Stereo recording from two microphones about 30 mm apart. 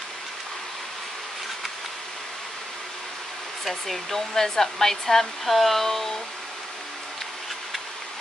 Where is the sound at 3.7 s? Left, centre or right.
Centre.